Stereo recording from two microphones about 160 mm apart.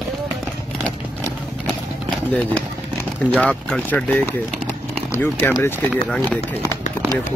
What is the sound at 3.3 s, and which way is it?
Speech, 5° left (ahead or behind).